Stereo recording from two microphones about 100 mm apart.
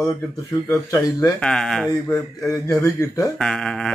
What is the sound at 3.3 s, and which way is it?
Speech, 5° left (ahead or behind).